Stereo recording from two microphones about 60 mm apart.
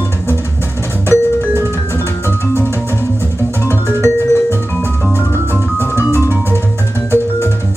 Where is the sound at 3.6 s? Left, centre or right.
Left.